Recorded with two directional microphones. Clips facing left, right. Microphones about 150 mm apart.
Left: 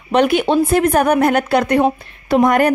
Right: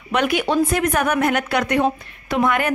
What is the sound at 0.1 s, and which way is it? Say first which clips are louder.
Speech: left 5 dB; 30° left (ahead or behind).